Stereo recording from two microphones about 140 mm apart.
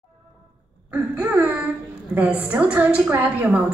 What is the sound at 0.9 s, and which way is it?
A woman's voice, 10° right (ahead or behind).